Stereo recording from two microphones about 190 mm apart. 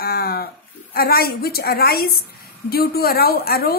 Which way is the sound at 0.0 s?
55° left (ahead or behind).